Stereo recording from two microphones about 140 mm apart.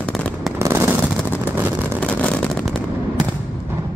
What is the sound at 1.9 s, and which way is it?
Vehicle, 5° left (ahead or behind).